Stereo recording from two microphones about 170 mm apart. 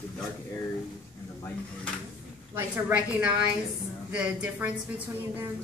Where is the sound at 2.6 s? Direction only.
10° right (ahead or behind).